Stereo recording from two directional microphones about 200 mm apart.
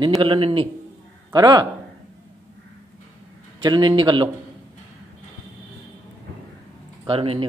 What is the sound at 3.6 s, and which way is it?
Speech, 25° right (ahead or behind).